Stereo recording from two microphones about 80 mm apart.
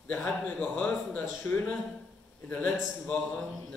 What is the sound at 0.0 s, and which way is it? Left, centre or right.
A man's voice, left.